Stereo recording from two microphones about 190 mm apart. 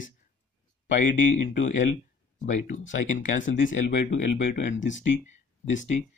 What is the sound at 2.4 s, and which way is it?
Speech, 40° left (ahead or behind).